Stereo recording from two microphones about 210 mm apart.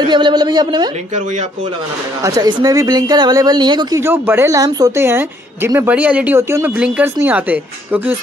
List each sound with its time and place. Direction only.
0.0 s a woman's voice: 20° right (ahead or behind)
2.2 s speech: 15° right (ahead or behind)